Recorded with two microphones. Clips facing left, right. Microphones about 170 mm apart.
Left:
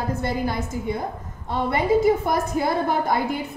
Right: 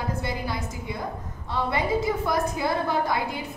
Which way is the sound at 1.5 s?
50° left (ahead or behind).